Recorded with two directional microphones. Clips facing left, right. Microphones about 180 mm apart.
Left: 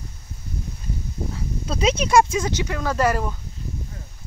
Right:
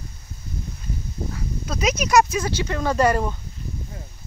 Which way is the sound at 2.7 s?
5° left (ahead or behind).